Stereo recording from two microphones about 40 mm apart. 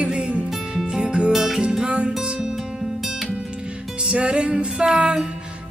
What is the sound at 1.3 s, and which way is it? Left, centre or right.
Music, centre.